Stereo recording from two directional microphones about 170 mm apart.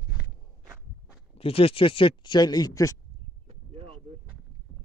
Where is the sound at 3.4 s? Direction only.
35° right (ahead or behind).